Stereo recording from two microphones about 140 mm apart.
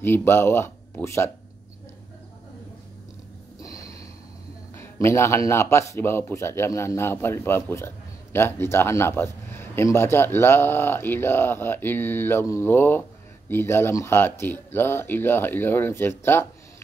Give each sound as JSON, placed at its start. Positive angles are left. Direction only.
{"t": 0.0, "sound": "speech", "side_deg": 15}
{"t": 3.5, "sound": "snort", "side_deg": 25}
{"t": 5.0, "sound": "speech", "side_deg": 20}